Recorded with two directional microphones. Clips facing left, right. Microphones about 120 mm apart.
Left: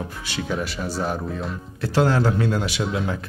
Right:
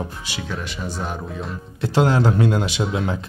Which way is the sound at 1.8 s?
20° right (ahead or behind).